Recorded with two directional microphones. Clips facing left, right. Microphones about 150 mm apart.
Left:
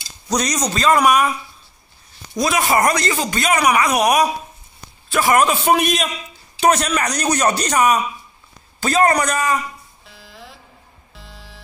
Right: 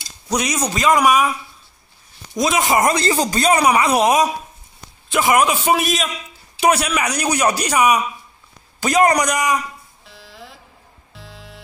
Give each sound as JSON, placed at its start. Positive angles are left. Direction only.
{"t": 0.3, "sound": "speech", "side_deg": -5}
{"t": 2.3, "sound": "speech", "side_deg": -20}
{"t": 10.0, "sound": "music", "side_deg": 0}